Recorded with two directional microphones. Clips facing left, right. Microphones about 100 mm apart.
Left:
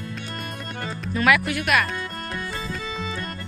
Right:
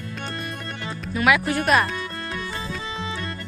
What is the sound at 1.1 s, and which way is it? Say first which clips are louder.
Speech: even; 15° right (ahead or behind).